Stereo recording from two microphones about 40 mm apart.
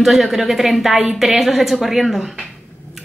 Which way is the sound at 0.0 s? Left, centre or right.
Centre.